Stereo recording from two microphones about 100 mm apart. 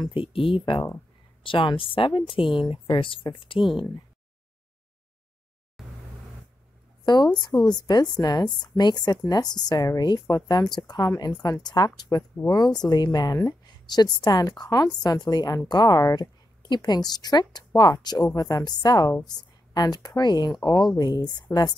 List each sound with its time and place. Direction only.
0.0 s a woman's voice: 60° left (ahead or behind)
3.5 s speech: 5° right (ahead or behind)
5.8 s vehicle: 5° right (ahead or behind)
7.1 s speech: 45° left (ahead or behind)